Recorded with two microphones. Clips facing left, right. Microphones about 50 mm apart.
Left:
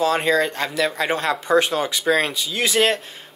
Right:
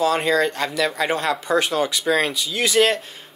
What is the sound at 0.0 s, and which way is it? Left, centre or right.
Speech, left.